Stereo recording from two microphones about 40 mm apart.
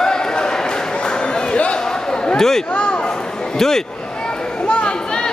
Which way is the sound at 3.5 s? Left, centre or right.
Centre.